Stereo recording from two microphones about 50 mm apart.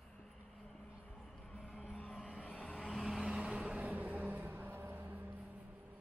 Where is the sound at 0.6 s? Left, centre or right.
Centre.